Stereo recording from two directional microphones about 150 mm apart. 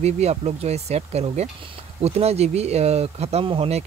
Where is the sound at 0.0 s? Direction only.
45° right (ahead or behind).